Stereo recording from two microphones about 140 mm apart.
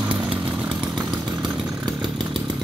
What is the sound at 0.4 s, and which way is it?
Chainsaw, 5° right (ahead or behind).